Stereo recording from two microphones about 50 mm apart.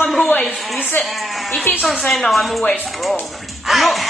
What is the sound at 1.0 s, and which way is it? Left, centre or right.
Speech, centre.